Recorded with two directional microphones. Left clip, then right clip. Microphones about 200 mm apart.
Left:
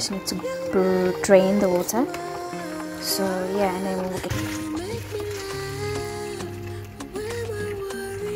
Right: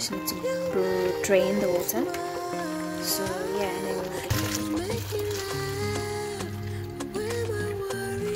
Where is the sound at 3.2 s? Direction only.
Centre (ahead or behind).